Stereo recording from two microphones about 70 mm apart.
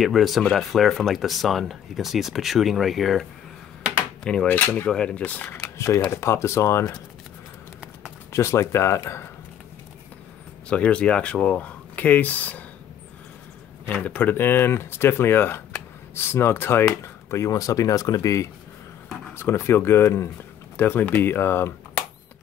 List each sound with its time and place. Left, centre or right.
0.0 s speech: centre
4.2 s speech: centre
4.5 s speech: left
5.6 s a sound: left
6.2 s speech: left
8.3 s speech: left
10.7 s speech: centre
13.8 s speech: left
19.3 s speech: left